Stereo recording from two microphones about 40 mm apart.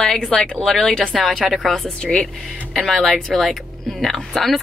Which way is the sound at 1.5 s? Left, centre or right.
Centre.